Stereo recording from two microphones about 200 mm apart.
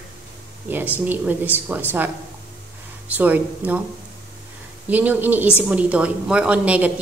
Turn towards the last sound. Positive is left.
turn(degrees=-5)  # may be behind; listen again after turning